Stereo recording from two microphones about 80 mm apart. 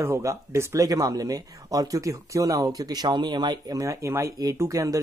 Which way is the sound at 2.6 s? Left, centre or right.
Right.